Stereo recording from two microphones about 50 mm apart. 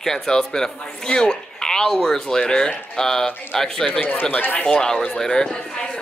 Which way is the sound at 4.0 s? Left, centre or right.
Left.